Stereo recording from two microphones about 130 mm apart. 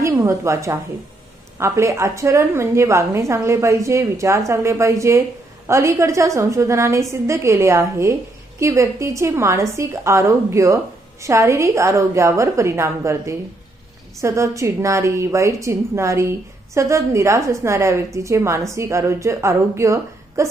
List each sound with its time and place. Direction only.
0.0 s a woman's voice: 25° right (ahead or behind)